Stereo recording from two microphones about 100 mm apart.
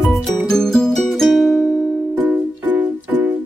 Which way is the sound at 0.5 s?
5° left (ahead or behind).